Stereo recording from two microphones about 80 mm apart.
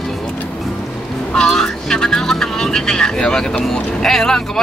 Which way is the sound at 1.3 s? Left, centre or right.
Centre.